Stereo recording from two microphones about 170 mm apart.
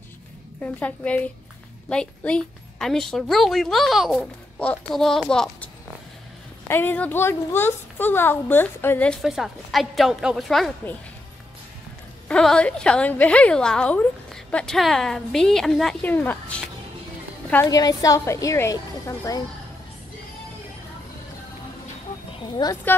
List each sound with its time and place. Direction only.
0.6 s a woman's voice: 10° left (ahead or behind)
6.7 s a woman's voice: 10° left (ahead or behind)
12.3 s a woman's voice: 5° left (ahead or behind)
17.6 s a woman's voice: 20° left (ahead or behind)
22.6 s a woman's voice: 25° left (ahead or behind)